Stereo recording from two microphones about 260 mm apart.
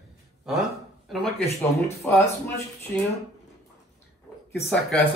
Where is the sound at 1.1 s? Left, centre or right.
Centre.